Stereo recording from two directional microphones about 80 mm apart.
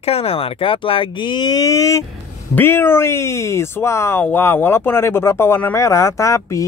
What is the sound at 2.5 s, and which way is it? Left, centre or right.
Speech, left.